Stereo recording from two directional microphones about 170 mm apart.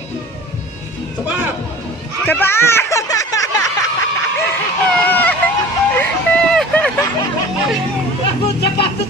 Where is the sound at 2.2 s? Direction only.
10° left (ahead or behind).